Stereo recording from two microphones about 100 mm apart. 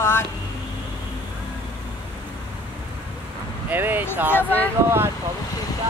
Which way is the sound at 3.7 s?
20° right (ahead or behind).